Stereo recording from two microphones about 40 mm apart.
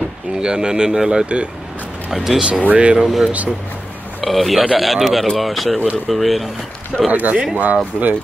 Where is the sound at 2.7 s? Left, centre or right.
Right.